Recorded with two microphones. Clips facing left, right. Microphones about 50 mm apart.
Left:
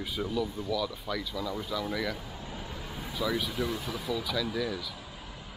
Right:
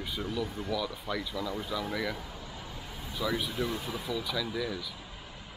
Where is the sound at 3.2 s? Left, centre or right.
Centre.